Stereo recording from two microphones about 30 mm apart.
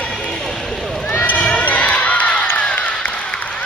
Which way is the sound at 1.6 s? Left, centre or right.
Left.